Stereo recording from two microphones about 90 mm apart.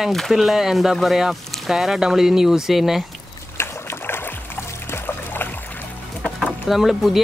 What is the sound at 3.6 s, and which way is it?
Boat, 25° left (ahead or behind).